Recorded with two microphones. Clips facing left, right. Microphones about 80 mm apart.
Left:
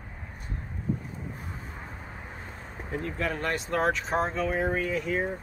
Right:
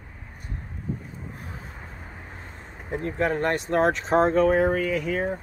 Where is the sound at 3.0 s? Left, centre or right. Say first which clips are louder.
Right 7 dB; right.